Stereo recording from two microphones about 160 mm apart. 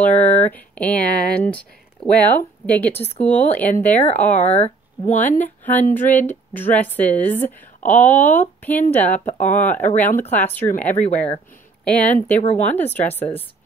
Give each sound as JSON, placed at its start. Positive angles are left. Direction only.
{"t": 0.0, "sound": "a woman's voice", "side_deg": 10}
{"t": 4.5, "sound": "speech", "side_deg": 45}
{"t": 5.4, "sound": "a woman's voice", "side_deg": 10}
{"t": 12.4, "sound": "speech", "side_deg": 45}
{"t": 12.6, "sound": "a woman's voice", "side_deg": 10}